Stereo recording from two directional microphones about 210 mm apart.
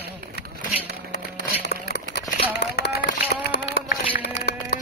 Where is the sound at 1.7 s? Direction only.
50° left (ahead or behind).